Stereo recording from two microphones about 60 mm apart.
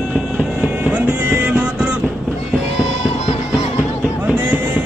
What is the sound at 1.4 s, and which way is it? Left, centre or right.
Music, right.